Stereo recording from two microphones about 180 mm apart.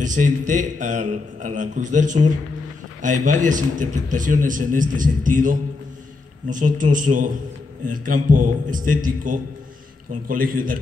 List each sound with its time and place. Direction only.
0.0 s a man's voice: 45° right (ahead or behind)